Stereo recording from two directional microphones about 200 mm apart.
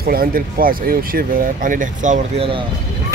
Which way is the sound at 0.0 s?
50° right (ahead or behind).